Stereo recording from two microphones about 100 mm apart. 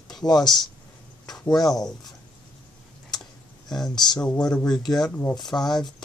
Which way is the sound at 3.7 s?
5° left (ahead or behind).